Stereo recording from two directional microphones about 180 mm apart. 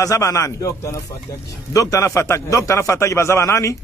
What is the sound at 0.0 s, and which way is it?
A man's voice, 15° left (ahead or behind).